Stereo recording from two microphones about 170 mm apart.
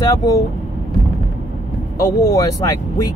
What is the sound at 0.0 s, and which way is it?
Speech, 20° left (ahead or behind).